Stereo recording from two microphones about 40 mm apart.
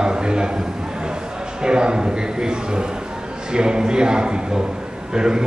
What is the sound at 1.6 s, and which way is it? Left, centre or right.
A man's voice, right.